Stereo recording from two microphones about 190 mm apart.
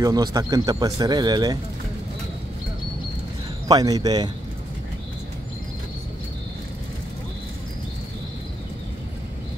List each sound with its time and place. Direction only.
0.0 s speech: 20° right (ahead or behind)
3.6 s speech: 20° right (ahead or behind)